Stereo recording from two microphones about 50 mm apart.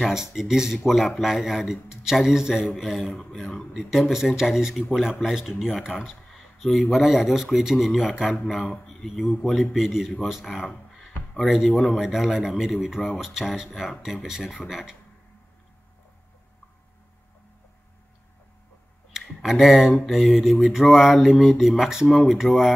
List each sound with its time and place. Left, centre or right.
0.0 s mantra: centre
2.7 s speech: centre
3.7 s mantra: centre
4.8 s speech: centre
9.8 s mantra: centre
10.2 s speech: centre
13.2 s mantra: centre
19.1 s tick: centre
20.1 s speech: centre
20.6 s mantra: centre
22.0 s speech: centre